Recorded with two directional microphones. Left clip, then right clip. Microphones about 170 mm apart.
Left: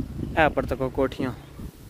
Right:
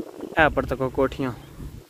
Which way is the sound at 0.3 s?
10° right (ahead or behind).